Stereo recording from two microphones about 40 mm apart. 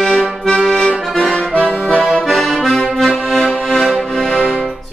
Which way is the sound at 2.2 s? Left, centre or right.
Centre.